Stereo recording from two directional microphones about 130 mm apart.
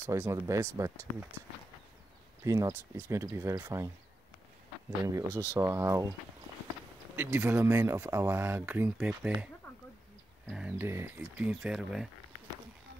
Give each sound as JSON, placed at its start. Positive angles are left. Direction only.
{"t": 0.0, "sound": "speech", "side_deg": -20}
{"t": 2.4, "sound": "speech", "side_deg": -25}
{"t": 5.0, "sound": "speech", "side_deg": -25}
{"t": 7.2, "sound": "speech", "side_deg": -15}
{"t": 10.5, "sound": "speech", "side_deg": -5}